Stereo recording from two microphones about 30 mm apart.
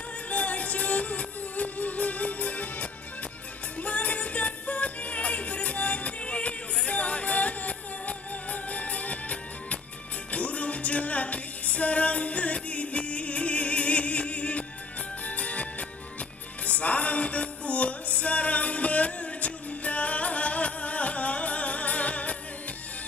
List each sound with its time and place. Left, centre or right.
0.3 s music: left